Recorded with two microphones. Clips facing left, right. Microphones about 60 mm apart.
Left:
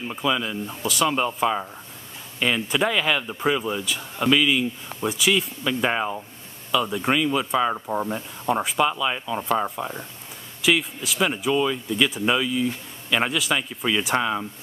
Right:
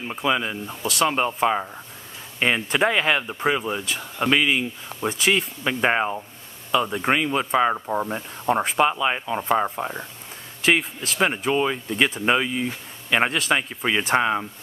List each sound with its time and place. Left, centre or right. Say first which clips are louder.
0.1 s speech: right 2 dB; right
2.3 s speech: right 1 dB; right
7.7 s speech: right 1 dB; centre
8.6 s speech: right 2 dB; right
10.6 s speech: right 1 dB; right
11.1 s speech: right 1 dB; right